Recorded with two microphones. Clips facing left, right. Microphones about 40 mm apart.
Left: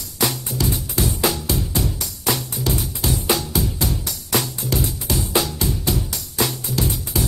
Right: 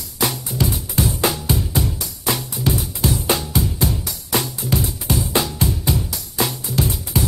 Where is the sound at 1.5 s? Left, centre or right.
Right.